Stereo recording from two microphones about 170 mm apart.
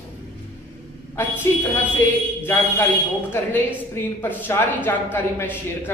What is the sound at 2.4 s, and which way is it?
Speech, 10° left (ahead or behind).